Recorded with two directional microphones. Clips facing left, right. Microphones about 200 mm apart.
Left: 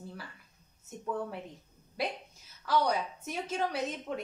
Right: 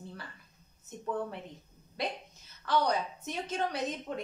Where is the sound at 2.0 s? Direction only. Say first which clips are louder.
Left 1 dB; 5° left (ahead or behind).